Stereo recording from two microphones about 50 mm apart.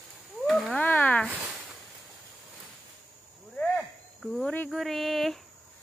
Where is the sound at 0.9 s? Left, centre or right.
Left.